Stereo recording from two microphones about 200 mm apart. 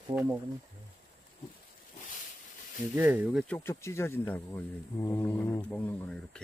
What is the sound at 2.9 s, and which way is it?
Speech, 10° right (ahead or behind).